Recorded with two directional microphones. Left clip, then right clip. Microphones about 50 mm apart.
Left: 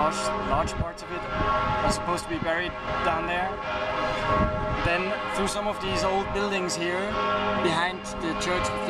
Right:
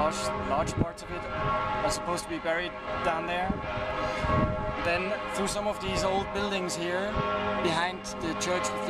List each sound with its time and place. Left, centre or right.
0.0 s speech: right
1.4 s speech: centre
1.9 s speech: right
3.1 s speech: right
4.0 s a sound: centre
4.8 s a man's voice: right
6.1 s speech: right
7.2 s speech: centre
7.6 s speech: right